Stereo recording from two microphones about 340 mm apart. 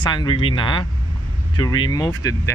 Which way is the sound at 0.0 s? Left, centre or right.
Centre.